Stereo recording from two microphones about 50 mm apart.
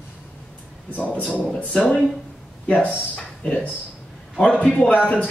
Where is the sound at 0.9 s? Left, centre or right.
Left.